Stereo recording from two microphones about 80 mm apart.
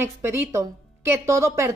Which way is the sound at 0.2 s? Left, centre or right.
Right.